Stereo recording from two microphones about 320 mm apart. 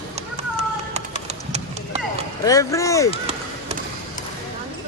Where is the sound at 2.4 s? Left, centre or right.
Centre.